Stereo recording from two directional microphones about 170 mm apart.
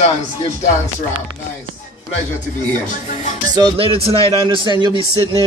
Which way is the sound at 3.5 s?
30° right (ahead or behind).